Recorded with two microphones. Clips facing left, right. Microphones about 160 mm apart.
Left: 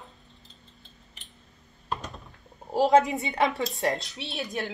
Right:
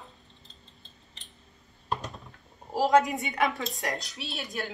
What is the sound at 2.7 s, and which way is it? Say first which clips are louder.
A woman's voice: left 2 dB; 30° left (ahead or behind).